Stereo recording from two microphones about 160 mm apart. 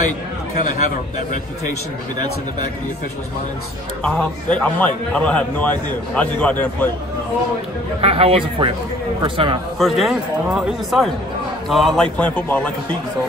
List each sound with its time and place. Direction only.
0.6 s a man's voice: 55° left (ahead or behind)
4.0 s a man's voice: 5° left (ahead or behind)
8.0 s speech: 35° right (ahead or behind)
9.8 s a man's voice: centre (ahead or behind)